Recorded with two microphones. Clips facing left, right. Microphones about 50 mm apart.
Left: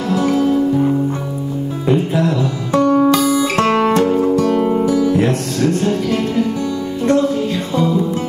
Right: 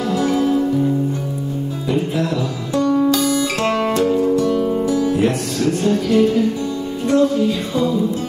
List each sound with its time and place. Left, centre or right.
2.9 s music: left
3.6 s music: left
4.5 s music: left